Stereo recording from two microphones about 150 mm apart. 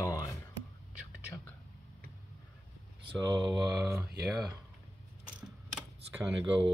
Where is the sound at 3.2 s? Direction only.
30° right (ahead or behind).